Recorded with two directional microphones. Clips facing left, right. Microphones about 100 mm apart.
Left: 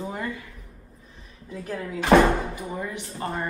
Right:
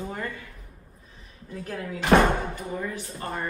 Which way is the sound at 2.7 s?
15° left (ahead or behind).